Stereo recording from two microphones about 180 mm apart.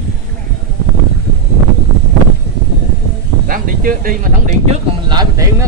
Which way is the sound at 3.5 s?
50° right (ahead or behind).